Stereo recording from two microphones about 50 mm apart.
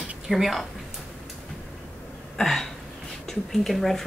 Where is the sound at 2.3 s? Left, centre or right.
Centre.